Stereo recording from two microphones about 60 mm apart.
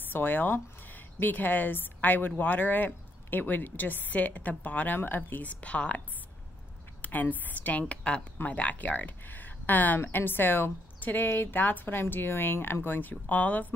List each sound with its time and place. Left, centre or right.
0.0 s a woman's voice: left